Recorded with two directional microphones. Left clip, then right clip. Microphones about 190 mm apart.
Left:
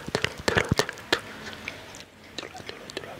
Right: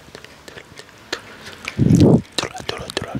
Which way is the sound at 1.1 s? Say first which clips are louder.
Left 2 dB; 30° left (ahead or behind).